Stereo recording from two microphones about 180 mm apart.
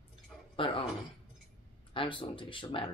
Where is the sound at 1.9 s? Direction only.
30° left (ahead or behind).